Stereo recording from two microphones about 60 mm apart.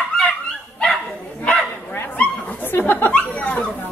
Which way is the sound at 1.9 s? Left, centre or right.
Left.